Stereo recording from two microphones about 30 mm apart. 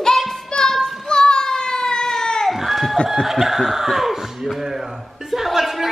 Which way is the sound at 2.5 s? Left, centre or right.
Centre.